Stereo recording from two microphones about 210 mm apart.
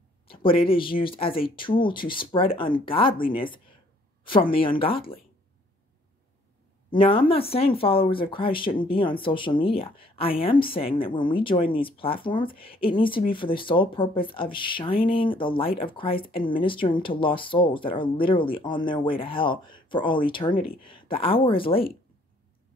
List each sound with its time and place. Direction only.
0.3 s a sound: 25° left (ahead or behind)
0.7 s speech: 25° left (ahead or behind)
6.9 s speech: 25° left (ahead or behind)